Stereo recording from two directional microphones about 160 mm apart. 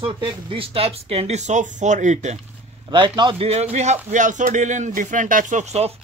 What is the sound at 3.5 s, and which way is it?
Speech, 45° right (ahead or behind).